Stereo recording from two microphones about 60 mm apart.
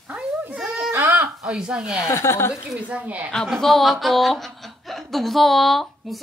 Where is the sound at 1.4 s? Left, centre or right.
Centre.